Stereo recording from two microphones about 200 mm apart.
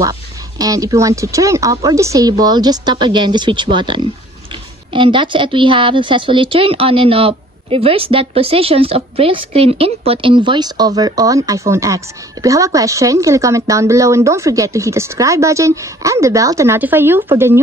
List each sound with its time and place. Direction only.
0.6 s a woman's voice: 15° right (ahead or behind)